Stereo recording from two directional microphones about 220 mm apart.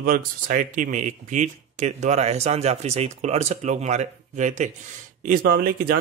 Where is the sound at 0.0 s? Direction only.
40° right (ahead or behind).